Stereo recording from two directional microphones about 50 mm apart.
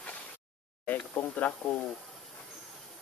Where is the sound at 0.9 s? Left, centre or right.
Left.